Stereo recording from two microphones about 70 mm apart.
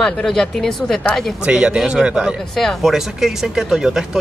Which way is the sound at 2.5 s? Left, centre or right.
Centre.